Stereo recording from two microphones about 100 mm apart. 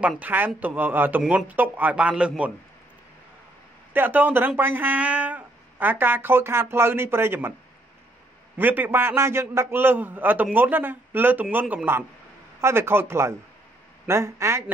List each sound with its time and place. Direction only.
0.2 s speech: 20° right (ahead or behind)
3.9 s speech: 20° right (ahead or behind)
8.5 s speech: 20° right (ahead or behind)